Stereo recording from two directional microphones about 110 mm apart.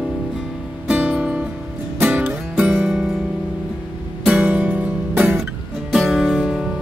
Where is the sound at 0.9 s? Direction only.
10° right (ahead or behind).